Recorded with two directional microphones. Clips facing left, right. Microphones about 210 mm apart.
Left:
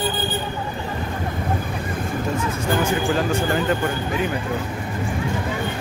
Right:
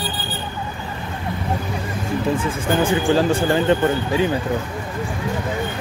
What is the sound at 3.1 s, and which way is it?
Speech, 30° right (ahead or behind).